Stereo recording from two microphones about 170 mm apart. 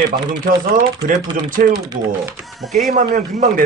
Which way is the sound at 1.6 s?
65° right (ahead or behind).